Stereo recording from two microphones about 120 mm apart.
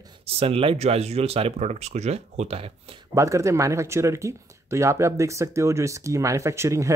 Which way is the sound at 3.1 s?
25° right (ahead or behind).